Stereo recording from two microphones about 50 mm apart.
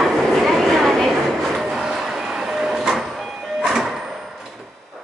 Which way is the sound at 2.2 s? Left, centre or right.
Centre.